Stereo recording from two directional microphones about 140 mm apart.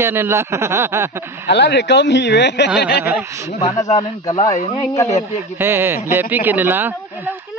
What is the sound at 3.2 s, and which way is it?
Speech, 20° right (ahead or behind).